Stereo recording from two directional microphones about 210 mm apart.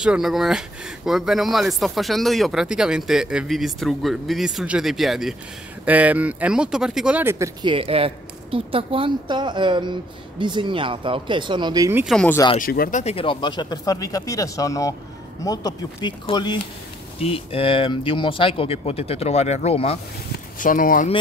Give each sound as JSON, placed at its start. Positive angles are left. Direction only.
{"t": 0.0, "sound": "speech", "side_deg": -5}
{"t": 7.7, "sound": "speech", "side_deg": -25}
{"t": 12.0, "sound": "speech", "side_deg": 0}
{"t": 12.5, "sound": "speech", "side_deg": 45}
{"t": 20.5, "sound": "speech", "side_deg": 40}